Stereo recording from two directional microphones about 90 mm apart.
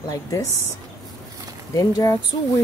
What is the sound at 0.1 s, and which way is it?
Speech, 35° left (ahead or behind).